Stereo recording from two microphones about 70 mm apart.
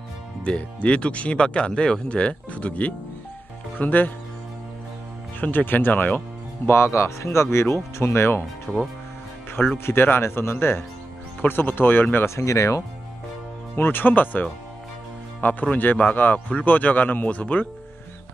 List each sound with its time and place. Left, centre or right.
0.4 s a man's voice: centre
5.4 s speech: left
6.7 s speech: left
8.7 s speech: centre
9.8 s a man's voice: left
12.4 s speech: left
13.7 s a man's voice: left
15.4 s a man's voice: left